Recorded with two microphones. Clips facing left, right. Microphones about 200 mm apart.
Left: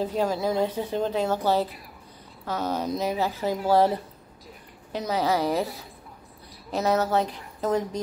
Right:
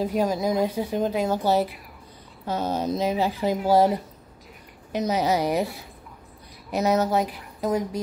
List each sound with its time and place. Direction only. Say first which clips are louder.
0.0 s speech: right 2 dB; 15° right (ahead or behind)
2.4 s speech: right 2 dB; 25° right (ahead or behind)
6.7 s speech: right 2 dB; 15° right (ahead or behind)